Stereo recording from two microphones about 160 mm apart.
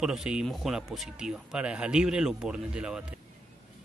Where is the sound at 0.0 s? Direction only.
5° right (ahead or behind).